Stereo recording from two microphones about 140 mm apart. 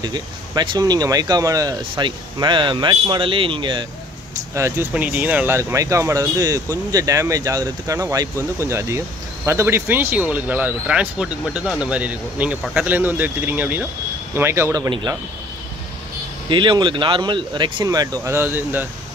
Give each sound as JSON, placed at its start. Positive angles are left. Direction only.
{"t": 0.0, "sound": "speech", "side_deg": -30}
{"t": 4.6, "sound": "speech", "side_deg": -20}
{"t": 16.4, "sound": "speech", "side_deg": -35}